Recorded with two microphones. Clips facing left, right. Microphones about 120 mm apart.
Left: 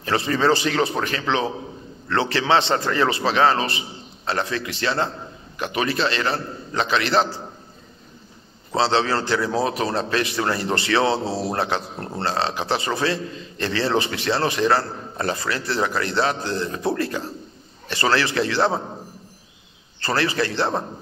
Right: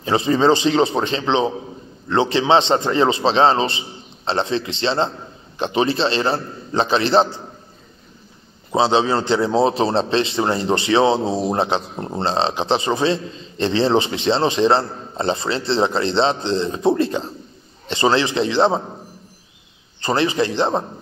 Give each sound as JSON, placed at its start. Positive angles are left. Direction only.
{"t": 0.0, "sound": "a man's voice", "side_deg": -20}
{"t": 8.7, "sound": "a man's voice", "side_deg": -20}
{"t": 20.0, "sound": "a man's voice", "side_deg": -20}